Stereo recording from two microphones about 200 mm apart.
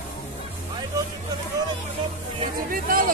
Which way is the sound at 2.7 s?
45° right (ahead or behind).